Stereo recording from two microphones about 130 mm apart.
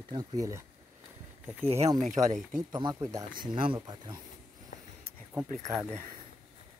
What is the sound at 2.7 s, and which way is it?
Speech, 30° right (ahead or behind).